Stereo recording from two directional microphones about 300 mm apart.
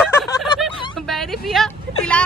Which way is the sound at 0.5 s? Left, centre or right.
Centre.